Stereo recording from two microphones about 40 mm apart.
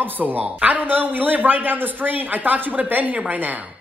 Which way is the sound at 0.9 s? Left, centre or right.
Right.